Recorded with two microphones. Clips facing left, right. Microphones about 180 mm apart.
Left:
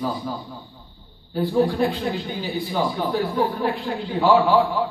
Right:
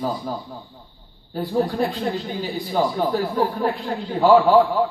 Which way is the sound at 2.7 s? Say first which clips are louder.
Right 4 dB; 40° right (ahead or behind).